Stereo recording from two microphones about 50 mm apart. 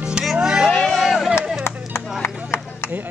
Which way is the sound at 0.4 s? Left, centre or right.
Centre.